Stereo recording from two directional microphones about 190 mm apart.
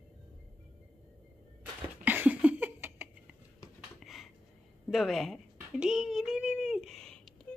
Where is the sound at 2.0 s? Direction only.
10° right (ahead or behind).